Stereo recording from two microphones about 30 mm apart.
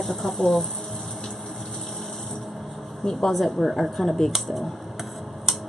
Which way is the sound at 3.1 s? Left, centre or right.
Centre.